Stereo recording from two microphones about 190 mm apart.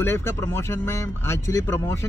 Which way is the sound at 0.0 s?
10° left (ahead or behind).